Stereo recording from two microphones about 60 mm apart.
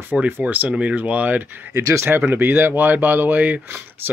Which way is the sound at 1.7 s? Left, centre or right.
Right.